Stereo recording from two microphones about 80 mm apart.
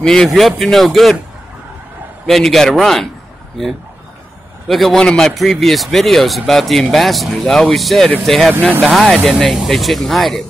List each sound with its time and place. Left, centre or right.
0.0 s speech: centre
2.2 s speech: centre
4.6 s speech: centre